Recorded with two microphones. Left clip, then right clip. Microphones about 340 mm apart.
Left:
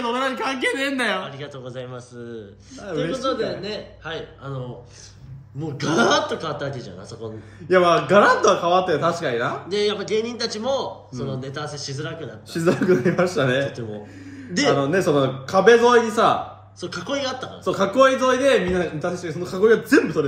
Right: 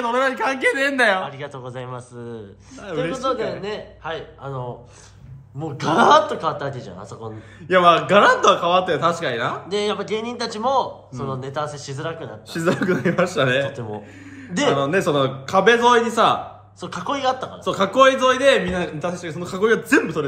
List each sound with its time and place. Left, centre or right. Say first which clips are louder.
0.0 s a man's voice: right 3 dB; centre
5.8 s a man's voice: right 5 dB; centre
7.6 s a man's voice: right 2 dB; right
9.7 s a man's voice: even; centre
13.1 s a man's voice: right 1 dB; right
13.4 s a man's voice: right 2 dB; centre
15.0 s a man's voice: even; right
16.8 s a man's voice: right 4 dB; centre
17.6 s a man's voice: right 2 dB; right